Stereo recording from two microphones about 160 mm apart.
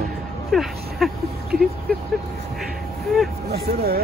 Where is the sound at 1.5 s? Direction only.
75° right (ahead or behind).